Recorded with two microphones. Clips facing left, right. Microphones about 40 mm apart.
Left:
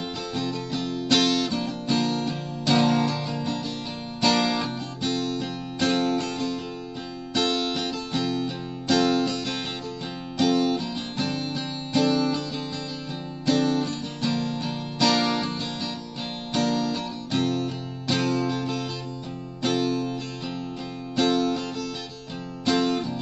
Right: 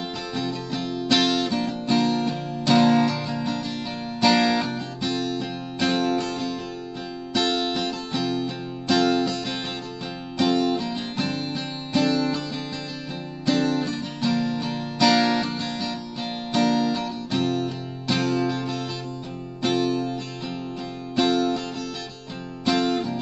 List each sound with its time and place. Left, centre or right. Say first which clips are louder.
0.3 s music: even; centre
8.9 s music: right 1 dB; centre
9.2 s music: right 1 dB; centre
11.9 s music: even; centre
13.5 s music: even; centre
19.6 s music: right 2 dB; centre
21.2 s music: right 1 dB; centre
22.7 s music: right 1 dB; centre